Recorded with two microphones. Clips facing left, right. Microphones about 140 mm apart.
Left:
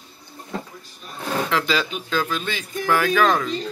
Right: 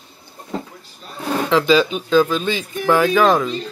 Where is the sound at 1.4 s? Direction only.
20° right (ahead or behind).